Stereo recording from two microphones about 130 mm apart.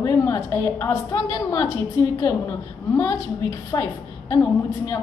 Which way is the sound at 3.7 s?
25° left (ahead or behind).